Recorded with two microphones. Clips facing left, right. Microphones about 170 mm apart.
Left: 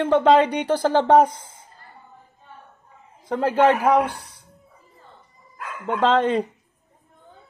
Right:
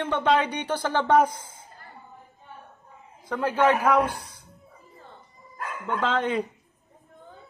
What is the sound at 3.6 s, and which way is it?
Speech, 30° left (ahead or behind).